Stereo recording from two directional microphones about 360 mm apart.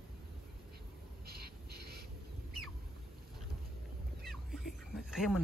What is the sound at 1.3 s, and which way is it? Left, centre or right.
Owl, right.